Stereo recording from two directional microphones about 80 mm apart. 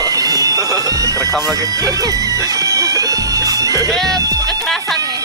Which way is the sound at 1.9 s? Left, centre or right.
Right.